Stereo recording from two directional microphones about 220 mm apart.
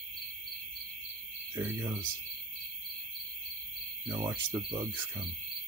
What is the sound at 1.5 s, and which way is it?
Speech, 10° right (ahead or behind).